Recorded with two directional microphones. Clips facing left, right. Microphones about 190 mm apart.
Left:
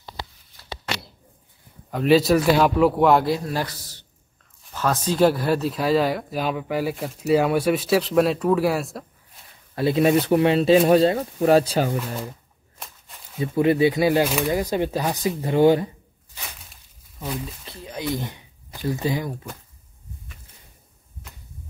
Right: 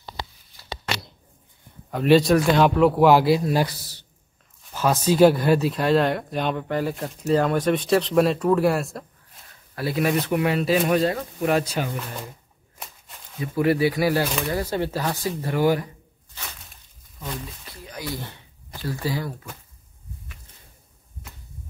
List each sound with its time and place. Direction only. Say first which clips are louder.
1.9 s speech: even; centre (ahead or behind)
3.3 s a man's voice: right 5 dB; 15° right (ahead or behind)
9.8 s speech: left 5 dB; 25° left (ahead or behind)
13.4 s speech: left 2 dB; 20° left (ahead or behind)
17.6 s speech: left 6 dB; 25° left (ahead or behind)